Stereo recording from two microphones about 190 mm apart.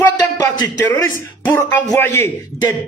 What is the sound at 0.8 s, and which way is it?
Speech, 10° left (ahead or behind).